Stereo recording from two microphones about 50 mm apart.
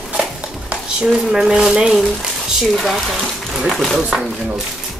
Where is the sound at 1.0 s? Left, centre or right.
Centre.